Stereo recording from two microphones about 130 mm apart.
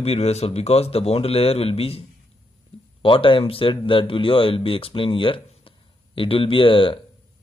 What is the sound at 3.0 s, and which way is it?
Speech, 40° left (ahead or behind).